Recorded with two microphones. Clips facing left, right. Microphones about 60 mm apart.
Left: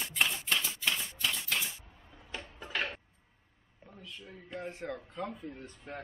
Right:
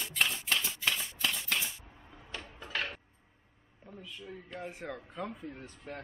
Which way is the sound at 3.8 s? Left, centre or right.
Centre.